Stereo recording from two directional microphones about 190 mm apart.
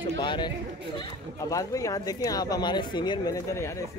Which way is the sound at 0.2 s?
25° left (ahead or behind).